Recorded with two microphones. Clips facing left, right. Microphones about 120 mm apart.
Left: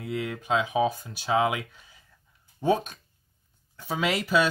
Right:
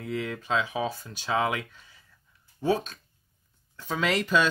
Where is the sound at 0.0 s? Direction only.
10° left (ahead or behind).